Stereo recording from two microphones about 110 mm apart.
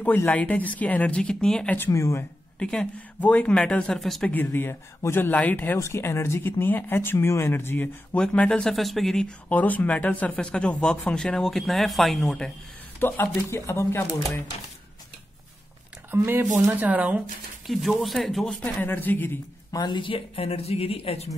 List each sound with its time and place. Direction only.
0.0 s speech: 15° left (ahead or behind)
1.8 s speech: 25° left (ahead or behind)
2.6 s speech: 10° left (ahead or behind)
4.3 s speech: 20° left (ahead or behind)
13.0 s speech: 20° left (ahead or behind)
16.1 s speech: 20° right (ahead or behind)
18.0 s speech: centre (ahead or behind)
18.9 s speech: 20° left (ahead or behind)
19.7 s speech: 45° left (ahead or behind); by 21.3 s 60° left (ahead or behind)